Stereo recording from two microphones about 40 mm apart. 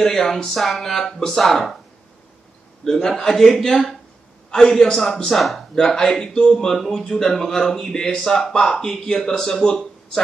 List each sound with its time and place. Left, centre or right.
0.0 s speech: centre
2.8 s speech: centre
6.7 s speech: centre
7.9 s speech: left
8.2 s speech: centre